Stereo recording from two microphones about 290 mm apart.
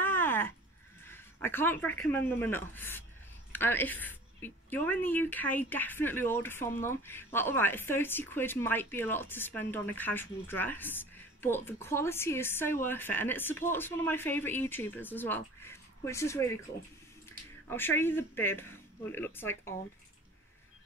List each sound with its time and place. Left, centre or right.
0.0 s a sound: centre
1.0 s a woman's voice: centre
17.6 s a woman's voice: centre